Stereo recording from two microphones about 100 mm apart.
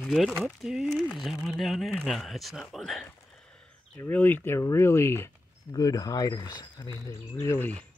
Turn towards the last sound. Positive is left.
turn(degrees=25)  # may be behind; listen again after turning